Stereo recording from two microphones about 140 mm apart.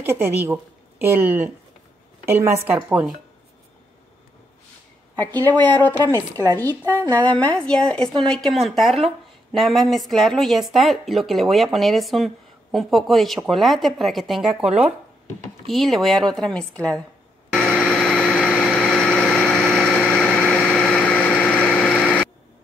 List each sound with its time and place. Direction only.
0.0 s a woman's voice: 15° right (ahead or behind)
5.2 s a woman's voice: 10° left (ahead or behind)
17.5 s a sound: 5° left (ahead or behind)